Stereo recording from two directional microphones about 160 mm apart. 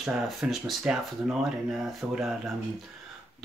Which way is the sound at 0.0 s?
Centre (ahead or behind).